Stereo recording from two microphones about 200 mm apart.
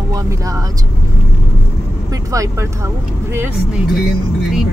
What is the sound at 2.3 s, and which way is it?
Speech, 15° right (ahead or behind).